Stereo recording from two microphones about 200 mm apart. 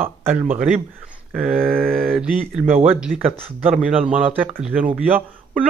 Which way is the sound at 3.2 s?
30° right (ahead or behind).